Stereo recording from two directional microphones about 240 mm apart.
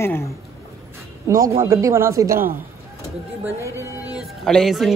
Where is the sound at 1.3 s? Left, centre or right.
Centre.